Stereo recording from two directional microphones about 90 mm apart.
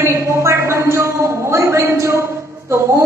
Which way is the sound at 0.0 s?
30° right (ahead or behind).